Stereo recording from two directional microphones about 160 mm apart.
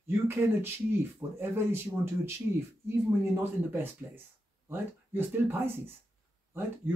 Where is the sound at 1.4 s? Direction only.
15° right (ahead or behind).